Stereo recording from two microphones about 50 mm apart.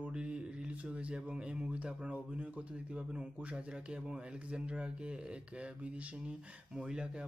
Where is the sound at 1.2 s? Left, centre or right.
Centre.